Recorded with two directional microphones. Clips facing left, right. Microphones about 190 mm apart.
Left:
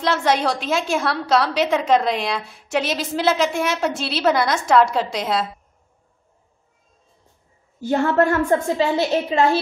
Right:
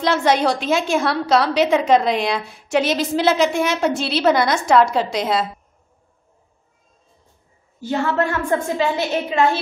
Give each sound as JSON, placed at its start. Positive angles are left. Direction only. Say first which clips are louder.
{"t": 0.0, "sound": "a woman's voice", "louder": "right 2 dB", "side_deg": 0}
{"t": 7.8, "sound": "a woman's voice", "louder": "left 3 dB", "side_deg": 50}